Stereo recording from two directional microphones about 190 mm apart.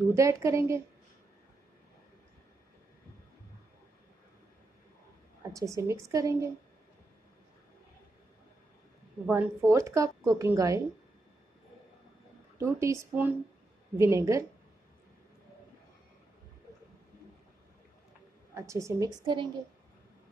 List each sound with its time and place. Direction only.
0.1 s a woman's voice: 15° right (ahead or behind)
5.5 s a woman's voice: 15° right (ahead or behind)
9.2 s a woman's voice: 10° right (ahead or behind)
12.5 s a woman's voice: 15° right (ahead or behind)
18.5 s a woman's voice: 15° right (ahead or behind)